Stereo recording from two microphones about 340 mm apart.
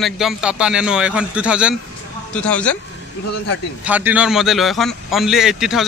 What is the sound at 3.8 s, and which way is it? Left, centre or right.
Speech, centre.